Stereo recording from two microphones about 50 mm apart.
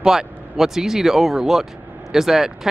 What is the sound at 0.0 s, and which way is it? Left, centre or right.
Speech, centre.